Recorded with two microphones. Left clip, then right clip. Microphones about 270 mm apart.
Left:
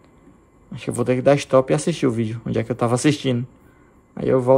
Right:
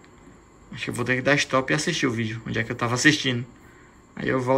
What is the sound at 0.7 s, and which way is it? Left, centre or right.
Speech, centre.